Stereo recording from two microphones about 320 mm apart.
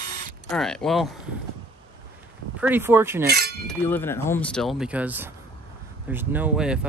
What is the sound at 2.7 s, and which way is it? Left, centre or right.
Speech, centre.